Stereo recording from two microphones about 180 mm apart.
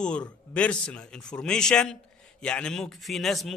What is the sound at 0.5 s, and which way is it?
A man's voice, 5° left (ahead or behind).